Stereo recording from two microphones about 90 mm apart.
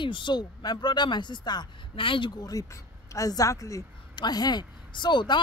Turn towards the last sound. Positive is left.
turn(degrees=55)  # may be behind; listen again after turning